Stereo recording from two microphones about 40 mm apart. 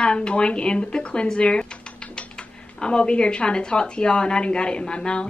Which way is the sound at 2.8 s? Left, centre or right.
Left.